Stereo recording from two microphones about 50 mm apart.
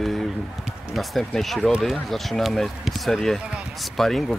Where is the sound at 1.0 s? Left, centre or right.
Centre.